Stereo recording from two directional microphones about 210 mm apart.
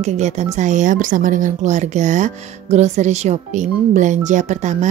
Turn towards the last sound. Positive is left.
turn(degrees=-35)  # may be behind; listen again after turning